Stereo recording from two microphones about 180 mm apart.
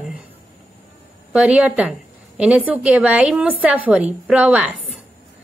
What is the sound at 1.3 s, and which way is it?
A woman's voice, 5° right (ahead or behind).